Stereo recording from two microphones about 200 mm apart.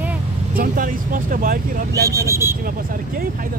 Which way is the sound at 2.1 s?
15° right (ahead or behind).